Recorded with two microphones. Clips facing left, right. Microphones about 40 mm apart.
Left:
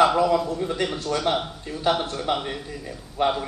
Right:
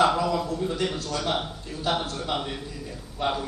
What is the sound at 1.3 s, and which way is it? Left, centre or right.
Speech, centre.